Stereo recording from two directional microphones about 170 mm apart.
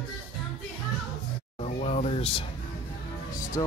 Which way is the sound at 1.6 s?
40° left (ahead or behind).